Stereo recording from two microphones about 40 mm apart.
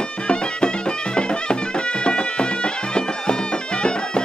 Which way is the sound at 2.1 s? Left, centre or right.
Left.